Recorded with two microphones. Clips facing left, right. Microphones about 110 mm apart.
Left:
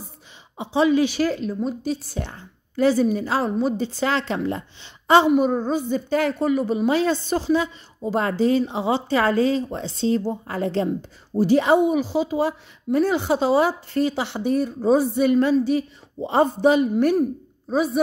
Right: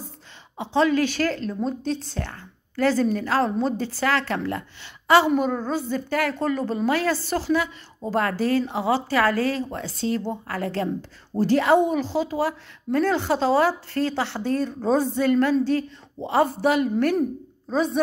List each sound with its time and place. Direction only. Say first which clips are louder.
0.6 s a woman's voice: left 2 dB; 15° left (ahead or behind)
3.7 s a woman's voice: left 1 dB; 20° left (ahead or behind)